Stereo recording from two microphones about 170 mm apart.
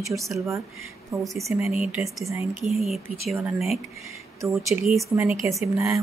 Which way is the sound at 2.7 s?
Centre (ahead or behind).